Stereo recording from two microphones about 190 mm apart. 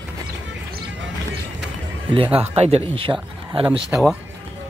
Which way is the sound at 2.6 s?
30° right (ahead or behind).